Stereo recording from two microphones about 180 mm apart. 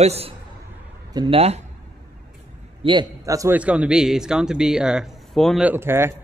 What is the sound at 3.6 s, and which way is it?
A man's voice, 5° right (ahead or behind).